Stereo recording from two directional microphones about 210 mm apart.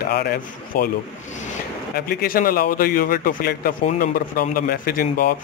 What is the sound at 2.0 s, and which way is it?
Speech, 45° left (ahead or behind).